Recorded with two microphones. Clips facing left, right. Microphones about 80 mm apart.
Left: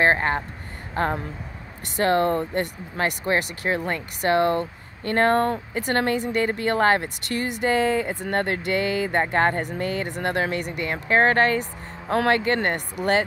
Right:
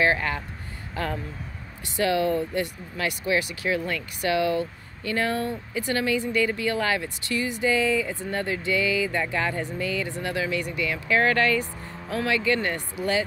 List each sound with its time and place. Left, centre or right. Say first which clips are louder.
0.0 s speech: left 3 dB; left
12.1 s speech: left 4 dB; left